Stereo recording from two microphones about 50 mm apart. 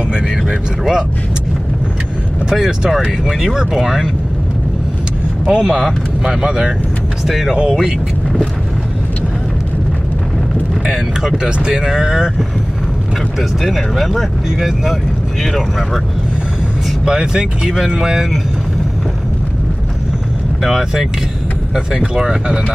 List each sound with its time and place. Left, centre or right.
0.1 s speech: centre
2.5 s speech: centre
5.5 s speech: centre
10.9 s speech: centre
13.4 s speech: centre
17.0 s speech: centre
20.6 s speech: centre